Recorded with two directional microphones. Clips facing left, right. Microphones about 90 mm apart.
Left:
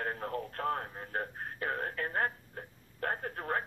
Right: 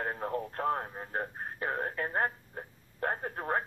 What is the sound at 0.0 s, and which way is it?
Radio, 20° right (ahead or behind).